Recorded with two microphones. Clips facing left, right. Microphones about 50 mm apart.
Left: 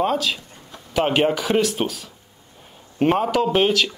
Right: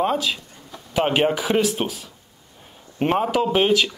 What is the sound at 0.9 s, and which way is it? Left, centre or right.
A man's voice, centre.